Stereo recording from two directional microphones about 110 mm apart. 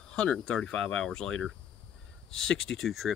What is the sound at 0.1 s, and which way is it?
Speech, 10° left (ahead or behind).